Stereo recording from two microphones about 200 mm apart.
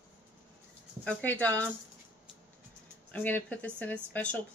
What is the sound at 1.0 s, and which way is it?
Speech, 5° left (ahead or behind).